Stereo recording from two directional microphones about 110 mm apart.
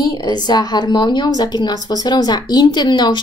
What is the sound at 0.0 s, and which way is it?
A woman's voice, 40° left (ahead or behind).